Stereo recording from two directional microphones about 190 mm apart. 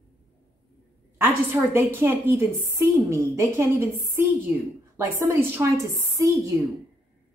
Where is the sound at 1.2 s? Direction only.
10° right (ahead or behind).